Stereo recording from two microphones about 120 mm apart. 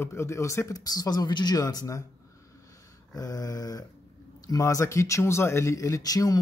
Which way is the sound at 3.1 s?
30° left (ahead or behind).